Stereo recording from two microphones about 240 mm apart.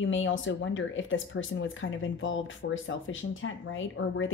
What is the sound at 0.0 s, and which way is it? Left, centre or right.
Speech, left.